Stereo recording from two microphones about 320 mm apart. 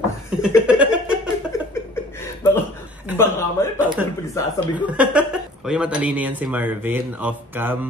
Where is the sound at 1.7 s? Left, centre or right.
Centre.